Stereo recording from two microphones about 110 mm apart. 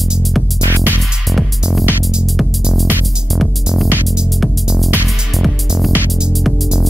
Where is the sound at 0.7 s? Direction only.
20° right (ahead or behind).